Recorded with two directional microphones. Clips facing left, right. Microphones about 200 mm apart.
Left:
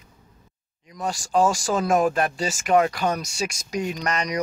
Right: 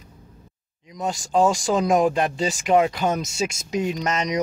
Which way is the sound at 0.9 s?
20° right (ahead or behind).